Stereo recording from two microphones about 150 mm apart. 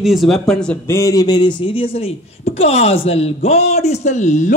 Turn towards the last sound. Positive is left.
turn(degrees=55)  # may be behind; listen again after turning